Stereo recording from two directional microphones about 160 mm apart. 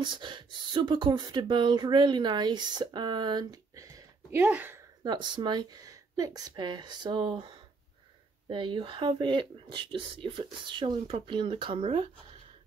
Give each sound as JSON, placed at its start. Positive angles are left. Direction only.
{"t": 0.0, "sound": "speech", "side_deg": -30}
{"t": 5.0, "sound": "speech", "side_deg": -25}